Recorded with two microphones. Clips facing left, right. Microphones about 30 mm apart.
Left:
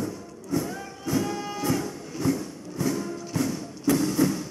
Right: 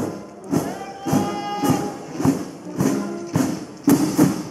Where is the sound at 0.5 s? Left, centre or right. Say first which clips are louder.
Right 5 dB; right.